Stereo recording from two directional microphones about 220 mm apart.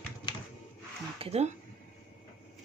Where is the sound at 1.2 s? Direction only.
30° right (ahead or behind).